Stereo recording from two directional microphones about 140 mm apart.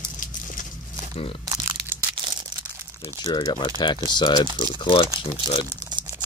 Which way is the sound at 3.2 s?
30° left (ahead or behind).